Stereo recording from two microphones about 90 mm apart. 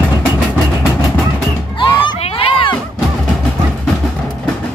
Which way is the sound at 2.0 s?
80° left.